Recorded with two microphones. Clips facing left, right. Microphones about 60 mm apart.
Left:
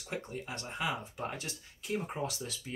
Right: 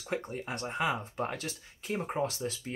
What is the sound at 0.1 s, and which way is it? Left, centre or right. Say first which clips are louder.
Speech: right 4 dB; right.